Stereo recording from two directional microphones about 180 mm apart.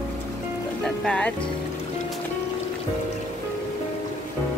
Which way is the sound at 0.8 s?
5° left (ahead or behind).